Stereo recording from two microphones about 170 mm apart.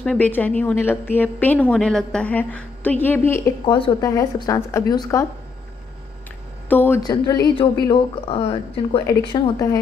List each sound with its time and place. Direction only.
0.0 s a woman's voice: 5° left (ahead or behind)
3.6 s a woman's voice: 30° left (ahead or behind)
6.7 s speech: 10° left (ahead or behind)
7.0 s a woman's voice: 25° left (ahead or behind)
9.0 s a woman's voice: 20° left (ahead or behind)